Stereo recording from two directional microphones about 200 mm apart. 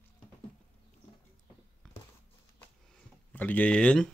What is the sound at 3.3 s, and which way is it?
Speech, 10° left (ahead or behind).